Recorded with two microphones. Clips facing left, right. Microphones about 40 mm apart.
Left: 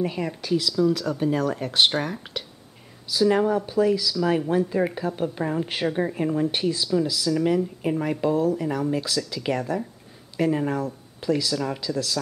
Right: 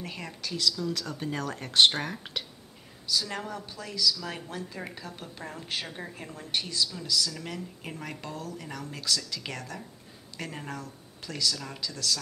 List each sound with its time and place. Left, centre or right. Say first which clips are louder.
0.0 s speech: left 11 dB; centre
3.1 s speech: left 12 dB; centre
6.6 s speech: left 10 dB; centre